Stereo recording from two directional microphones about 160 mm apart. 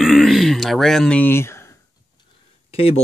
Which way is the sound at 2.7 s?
40° left (ahead or behind).